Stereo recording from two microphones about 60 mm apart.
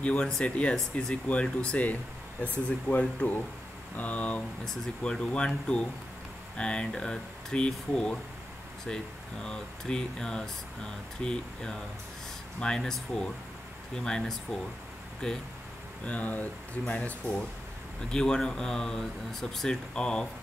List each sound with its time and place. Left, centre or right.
0.0 s speech: centre
4.6 s speech: centre
16.1 s speech: left
18.1 s speech: centre